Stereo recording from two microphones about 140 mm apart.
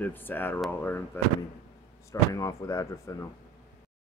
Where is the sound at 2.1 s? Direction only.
25° left (ahead or behind).